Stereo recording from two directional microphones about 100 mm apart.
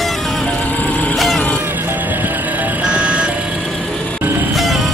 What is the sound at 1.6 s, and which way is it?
Vehicle, 20° right (ahead or behind).